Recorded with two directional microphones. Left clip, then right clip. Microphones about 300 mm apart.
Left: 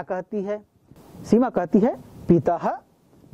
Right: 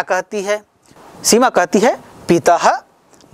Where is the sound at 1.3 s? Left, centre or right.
Centre.